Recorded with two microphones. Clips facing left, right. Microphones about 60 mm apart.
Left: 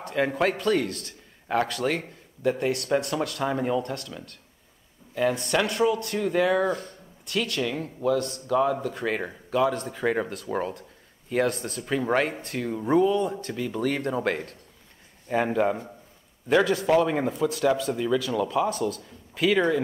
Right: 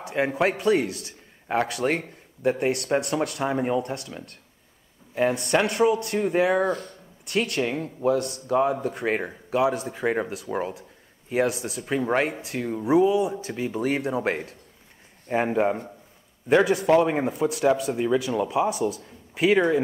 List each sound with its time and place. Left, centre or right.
0.4 s a man's voice: centre
5.4 s speech: right
9.5 s speech: centre
13.6 s speech: centre
15.2 s speech: right
19.3 s speech: right